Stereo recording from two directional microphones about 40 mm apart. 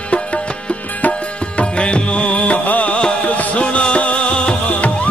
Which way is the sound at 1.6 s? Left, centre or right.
Left.